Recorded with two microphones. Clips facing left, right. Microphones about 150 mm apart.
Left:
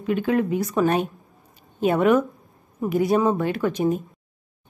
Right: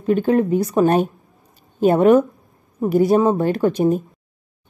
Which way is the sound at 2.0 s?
25° right (ahead or behind).